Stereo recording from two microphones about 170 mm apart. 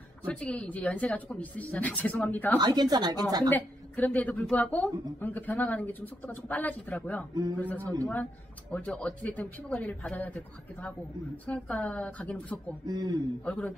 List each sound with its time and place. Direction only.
0.3 s a woman's voice: 5° left (ahead or behind)
2.6 s speech: 25° right (ahead or behind)
3.5 s a woman's voice: 10° left (ahead or behind)
12.8 s speech: 25° right (ahead or behind)
13.5 s a woman's voice: 5° left (ahead or behind)